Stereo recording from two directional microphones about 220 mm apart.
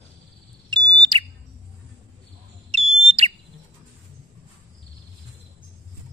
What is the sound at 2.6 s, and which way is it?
Bird, 30° right (ahead or behind).